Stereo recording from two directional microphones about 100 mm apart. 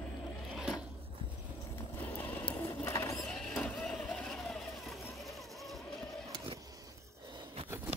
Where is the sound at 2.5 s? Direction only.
30° left (ahead or behind).